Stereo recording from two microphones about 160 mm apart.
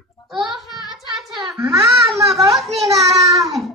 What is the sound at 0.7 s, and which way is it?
Child singing, 25° left (ahead or behind).